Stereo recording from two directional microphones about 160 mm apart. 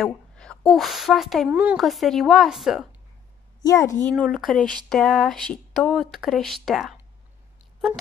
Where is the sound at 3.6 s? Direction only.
20° left (ahead or behind).